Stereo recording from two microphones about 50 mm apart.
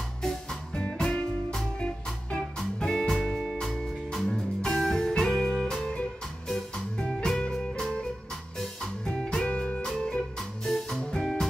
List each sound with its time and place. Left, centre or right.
0.9 s music: centre
3.3 s music: centre
7.0 s music: centre
9.0 s music: centre